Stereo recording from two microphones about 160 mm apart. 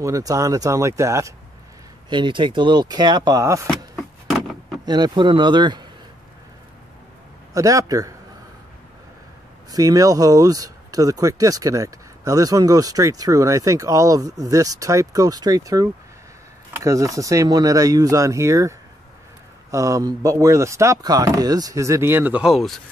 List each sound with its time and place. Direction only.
0.0 s speech: 20° right (ahead or behind)
2.0 s speech: 30° right (ahead or behind)
3.6 s a sound: 5° left (ahead or behind)
4.8 s speech: 25° right (ahead or behind)
7.5 s speech: 20° right (ahead or behind)
9.7 s speech: 20° right (ahead or behind); by 22.8 s centre (ahead or behind)